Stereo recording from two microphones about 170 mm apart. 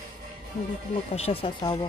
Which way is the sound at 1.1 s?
35° left (ahead or behind).